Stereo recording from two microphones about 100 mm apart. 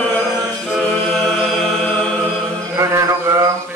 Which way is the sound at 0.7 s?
5° left (ahead or behind).